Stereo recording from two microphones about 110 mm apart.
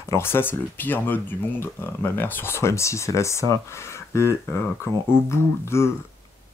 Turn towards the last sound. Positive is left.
turn(degrees=25)  # may be behind; listen again after turning